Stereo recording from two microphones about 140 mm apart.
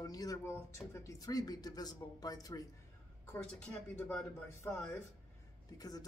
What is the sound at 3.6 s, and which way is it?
Speech, 5° left (ahead or behind).